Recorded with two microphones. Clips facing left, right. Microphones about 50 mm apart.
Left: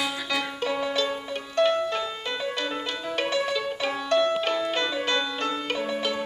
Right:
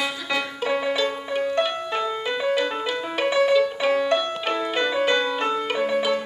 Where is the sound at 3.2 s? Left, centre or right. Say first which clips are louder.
Right 10 dB; centre.